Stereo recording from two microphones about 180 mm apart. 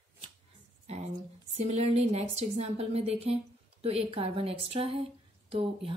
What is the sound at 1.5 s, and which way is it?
A woman's voice, 40° right (ahead or behind).